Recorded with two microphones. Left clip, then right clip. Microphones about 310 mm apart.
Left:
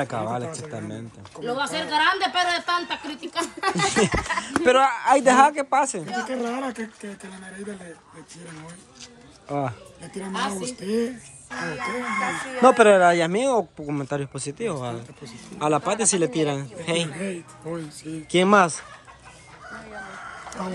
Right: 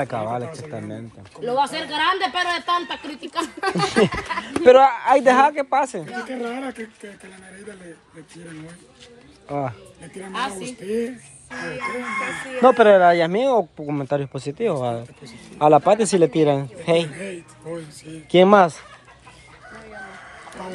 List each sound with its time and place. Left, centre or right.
0.0 s speech: centre
1.5 s speech: centre
3.8 s speech: centre
6.0 s speech: left
9.5 s speech: centre
10.9 s speech: left
12.5 s speech: centre
17.1 s speech: left
18.3 s speech: centre